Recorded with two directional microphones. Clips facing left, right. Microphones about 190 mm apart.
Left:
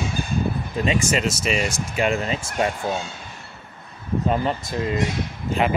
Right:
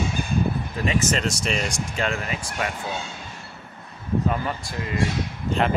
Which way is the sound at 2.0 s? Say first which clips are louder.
Left 5 dB; 25° left (ahead or behind).